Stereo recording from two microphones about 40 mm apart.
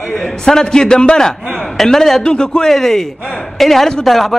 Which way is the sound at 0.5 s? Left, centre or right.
Centre.